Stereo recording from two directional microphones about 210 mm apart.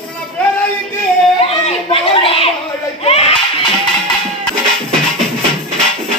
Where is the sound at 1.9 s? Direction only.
25° left (ahead or behind).